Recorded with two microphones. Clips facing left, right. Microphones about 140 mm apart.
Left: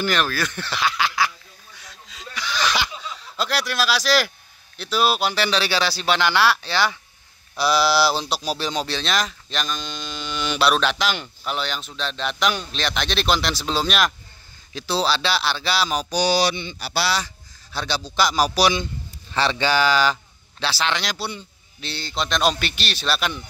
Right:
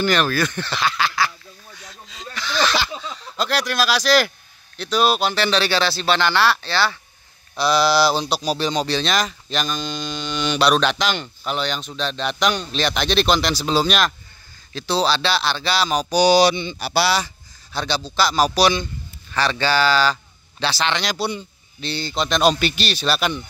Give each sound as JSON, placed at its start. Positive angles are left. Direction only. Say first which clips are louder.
{"t": 0.0, "sound": "speech", "louder": "right 4 dB", "side_deg": 0}
{"t": 2.0, "sound": "a sound", "louder": "right 1 dB", "side_deg": 5}
{"t": 3.3, "sound": "speech", "louder": "right 2 dB", "side_deg": 5}
{"t": 16.2, "sound": "speech", "louder": "right 6 dB", "side_deg": -15}
{"t": 17.7, "sound": "speech", "louder": "right 1 dB", "side_deg": 5}
{"t": 20.6, "sound": "speech", "louder": "right 2 dB", "side_deg": 0}